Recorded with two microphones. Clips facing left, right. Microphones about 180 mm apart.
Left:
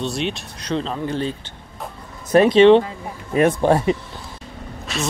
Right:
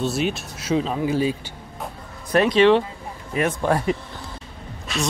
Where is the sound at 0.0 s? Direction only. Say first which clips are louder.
Right 1 dB; 5° right (ahead or behind).